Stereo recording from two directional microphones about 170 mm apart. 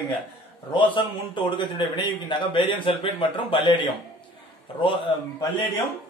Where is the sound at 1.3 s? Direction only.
30° left (ahead or behind).